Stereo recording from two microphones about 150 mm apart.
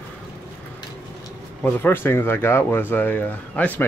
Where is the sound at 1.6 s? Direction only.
15° left (ahead or behind).